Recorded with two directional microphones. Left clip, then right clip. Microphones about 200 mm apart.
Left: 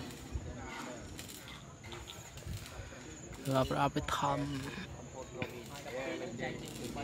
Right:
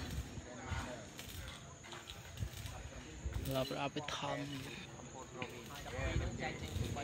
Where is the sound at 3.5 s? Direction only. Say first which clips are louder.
Left 7 dB; 20° left (ahead or behind).